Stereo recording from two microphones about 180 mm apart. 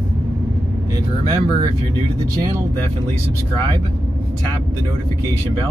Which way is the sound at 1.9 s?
20° right (ahead or behind).